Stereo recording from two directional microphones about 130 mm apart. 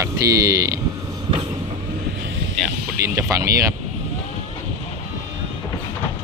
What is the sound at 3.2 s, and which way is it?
Speech, 25° right (ahead or behind).